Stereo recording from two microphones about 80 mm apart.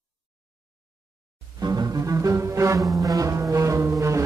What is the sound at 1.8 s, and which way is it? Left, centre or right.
Music, right.